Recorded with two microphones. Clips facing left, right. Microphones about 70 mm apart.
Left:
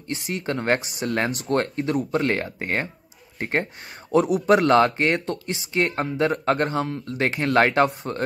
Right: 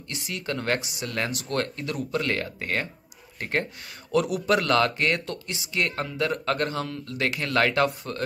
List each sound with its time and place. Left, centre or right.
0.2 s speech: left